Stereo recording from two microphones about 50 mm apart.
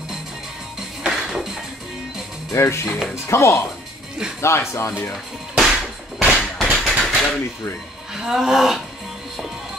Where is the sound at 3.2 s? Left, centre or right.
Left.